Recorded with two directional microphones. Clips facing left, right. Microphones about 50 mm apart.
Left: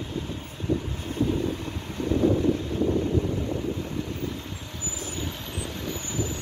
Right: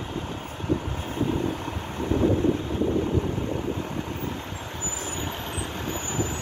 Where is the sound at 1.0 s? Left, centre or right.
Right.